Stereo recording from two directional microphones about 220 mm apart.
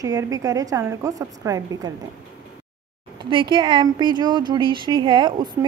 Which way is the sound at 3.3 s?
20° right (ahead or behind).